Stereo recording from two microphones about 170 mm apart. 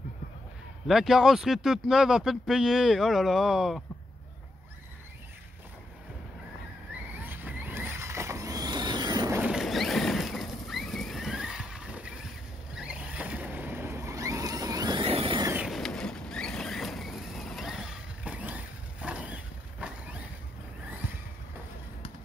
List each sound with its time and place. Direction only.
0.8 s speech: centre (ahead or behind)
7.2 s vehicle: 10° right (ahead or behind)
9.4 s a sound: 5° right (ahead or behind)
12.7 s boat: 5° right (ahead or behind); by 15.5 s 30° right (ahead or behind)
15.5 s vehicle: centre (ahead or behind)